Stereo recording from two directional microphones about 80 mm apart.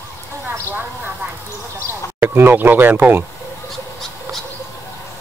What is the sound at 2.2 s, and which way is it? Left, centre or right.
Speech, right.